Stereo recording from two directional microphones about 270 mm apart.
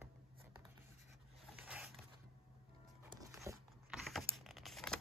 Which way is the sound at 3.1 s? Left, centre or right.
Centre.